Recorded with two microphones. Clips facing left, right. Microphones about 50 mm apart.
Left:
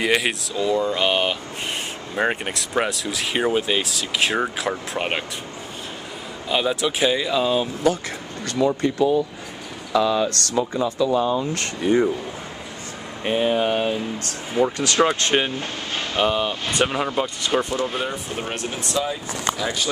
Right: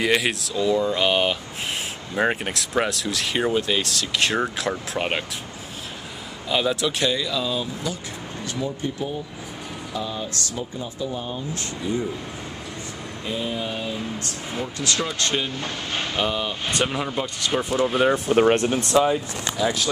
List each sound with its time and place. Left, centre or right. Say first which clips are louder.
0.0 s speech: left 1 dB; centre
6.5 s speech: left 1 dB; centre
7.1 s speech: left 4 dB; left
7.8 s speech: left 10 dB; left
8.5 s speech: left 8 dB; left
11.5 s speech: left 7 dB; left
13.2 s speech: left 8 dB; left
14.6 s speech: left 8 dB; left
16.2 s speech: left 6 dB; centre
18.3 s speech: right 10 dB; right
19.6 s speech: right 2 dB; centre